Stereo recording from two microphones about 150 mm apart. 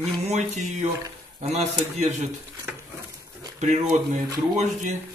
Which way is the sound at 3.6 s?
50° right (ahead or behind).